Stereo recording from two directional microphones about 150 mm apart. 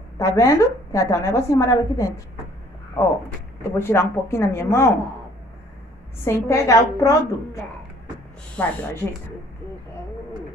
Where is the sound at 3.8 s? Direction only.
15° left (ahead or behind).